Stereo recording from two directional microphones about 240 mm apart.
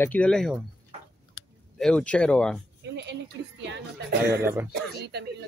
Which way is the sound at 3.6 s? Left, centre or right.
Right.